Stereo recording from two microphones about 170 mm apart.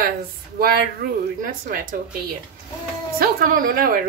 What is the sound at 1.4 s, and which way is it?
Speech, 55° right (ahead or behind).